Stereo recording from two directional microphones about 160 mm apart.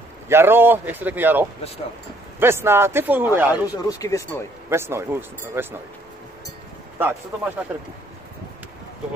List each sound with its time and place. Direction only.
0.3 s a man's voice: 15° right (ahead or behind)
3.6 s speech: 25° left (ahead or behind)
4.6 s a man's voice: 15° right (ahead or behind)
7.0 s a man's voice: 10° right (ahead or behind)